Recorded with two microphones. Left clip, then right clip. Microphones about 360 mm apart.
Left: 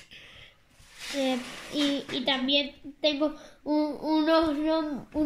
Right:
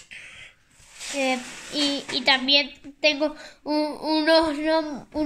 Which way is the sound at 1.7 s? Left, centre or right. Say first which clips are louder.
Right 4 dB; right.